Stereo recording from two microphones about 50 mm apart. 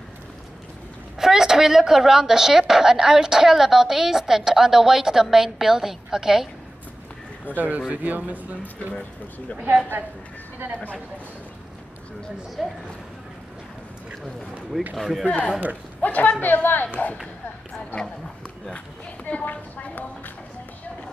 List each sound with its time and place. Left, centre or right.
1.2 s a woman's voice: centre
7.5 s speech: right
9.6 s speech: right
12.6 s speech: centre
15.0 s speech: centre
15.2 s speech: left
19.4 s speech: left